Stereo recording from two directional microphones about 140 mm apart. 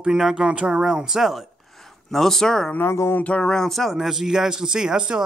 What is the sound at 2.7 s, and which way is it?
Speech, 20° left (ahead or behind).